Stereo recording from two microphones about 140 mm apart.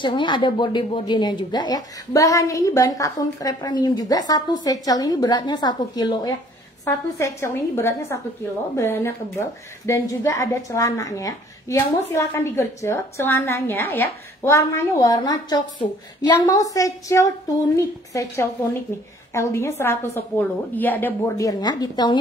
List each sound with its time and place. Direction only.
0.0 s a woman's voice: 35° left (ahead or behind); by 21.1 s 15° left (ahead or behind)
21.4 s a woman's voice: 25° left (ahead or behind)